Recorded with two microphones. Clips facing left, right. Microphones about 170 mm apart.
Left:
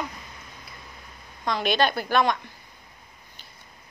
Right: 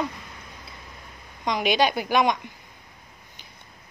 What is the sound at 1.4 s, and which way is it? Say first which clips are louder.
Speech: right 1 dB; 15° right (ahead or behind).